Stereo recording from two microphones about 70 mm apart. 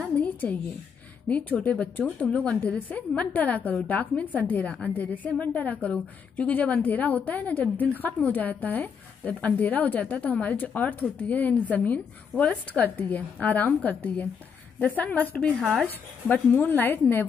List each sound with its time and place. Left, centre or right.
0.1 s a sound: left
1.3 s a woman's voice: centre
15.6 s speech: centre
16.3 s a woman's voice: left